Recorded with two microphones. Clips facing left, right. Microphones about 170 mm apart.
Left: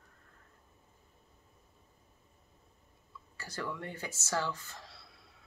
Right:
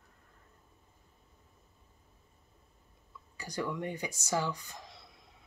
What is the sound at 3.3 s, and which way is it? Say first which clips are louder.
Speech: right 4 dB; 15° right (ahead or behind).